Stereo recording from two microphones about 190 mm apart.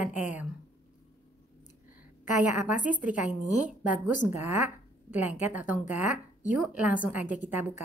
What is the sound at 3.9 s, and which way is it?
Speech, 45° left (ahead or behind).